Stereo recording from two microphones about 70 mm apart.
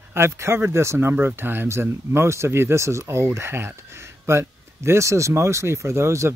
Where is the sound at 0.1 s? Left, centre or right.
Right.